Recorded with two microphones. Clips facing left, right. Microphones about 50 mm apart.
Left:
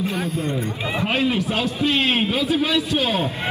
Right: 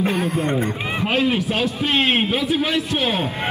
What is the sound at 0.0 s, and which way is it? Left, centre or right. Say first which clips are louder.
Speech: right 4 dB; right.